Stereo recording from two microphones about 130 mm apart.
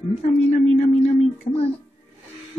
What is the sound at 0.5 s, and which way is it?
Speech, 65° left (ahead or behind).